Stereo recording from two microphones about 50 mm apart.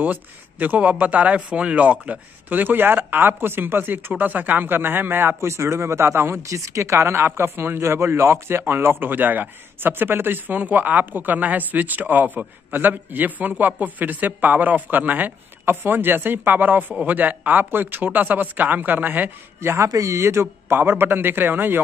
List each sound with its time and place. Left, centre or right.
0.0 s speech: right
5.4 s a man's voice: right
6.4 s speech: right
19.6 s a man's voice: right
21.0 s speech: right